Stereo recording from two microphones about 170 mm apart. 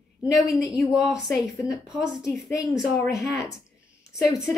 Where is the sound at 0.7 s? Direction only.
5° right (ahead or behind).